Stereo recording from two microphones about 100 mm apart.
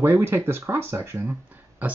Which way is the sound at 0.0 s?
20° right (ahead or behind).